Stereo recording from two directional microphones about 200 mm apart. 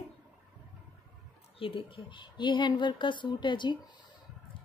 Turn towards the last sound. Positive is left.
turn(degrees=25)  # may be behind; listen again after turning